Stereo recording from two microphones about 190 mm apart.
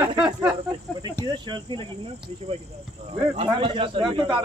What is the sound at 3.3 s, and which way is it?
A man's voice, 25° right (ahead or behind).